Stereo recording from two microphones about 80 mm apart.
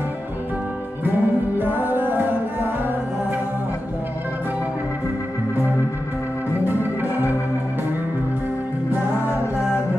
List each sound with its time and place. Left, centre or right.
1.0 s music: right
6.6 s organ: right